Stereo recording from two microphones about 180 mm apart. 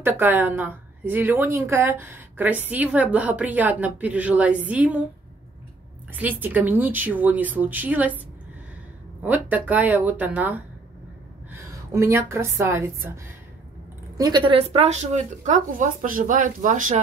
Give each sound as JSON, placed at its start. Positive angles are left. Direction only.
{"t": 0.0, "sound": "a woman's voice", "side_deg": -10}
{"t": 6.2, "sound": "a woman's voice", "side_deg": -10}
{"t": 9.2, "sound": "a woman's voice", "side_deg": -10}
{"t": 11.7, "sound": "a woman's voice", "side_deg": -15}